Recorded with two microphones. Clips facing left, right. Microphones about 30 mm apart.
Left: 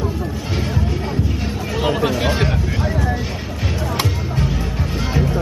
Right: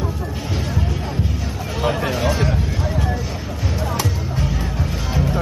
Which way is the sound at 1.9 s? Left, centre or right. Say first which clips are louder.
Left 2 dB; centre.